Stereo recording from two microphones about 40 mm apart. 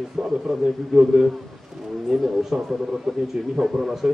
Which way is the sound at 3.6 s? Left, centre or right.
Centre.